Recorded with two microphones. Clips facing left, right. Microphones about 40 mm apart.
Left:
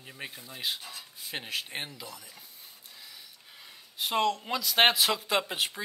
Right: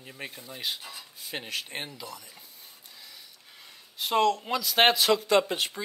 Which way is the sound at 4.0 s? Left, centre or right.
Centre.